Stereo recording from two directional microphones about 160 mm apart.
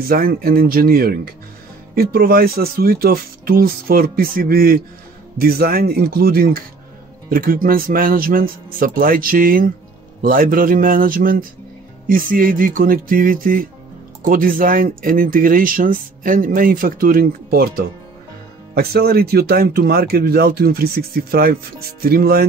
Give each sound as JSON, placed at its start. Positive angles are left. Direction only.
{"t": 0.0, "sound": "speech", "side_deg": -70}